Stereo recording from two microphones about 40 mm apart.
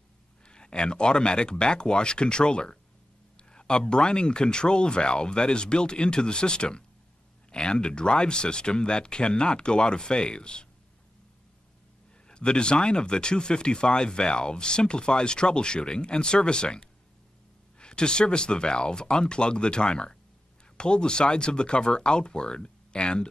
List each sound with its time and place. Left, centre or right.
0.5 s speech: left
12.3 s speech: left